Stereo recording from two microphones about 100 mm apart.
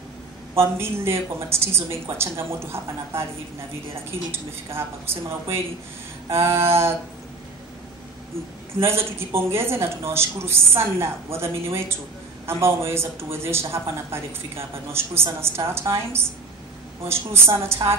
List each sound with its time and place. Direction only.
0.6 s speech: 25° right (ahead or behind)
6.3 s speech: 25° right (ahead or behind)
8.7 s speech: 25° right (ahead or behind)